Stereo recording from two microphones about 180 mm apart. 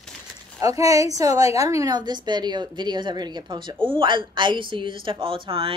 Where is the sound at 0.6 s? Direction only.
20° right (ahead or behind).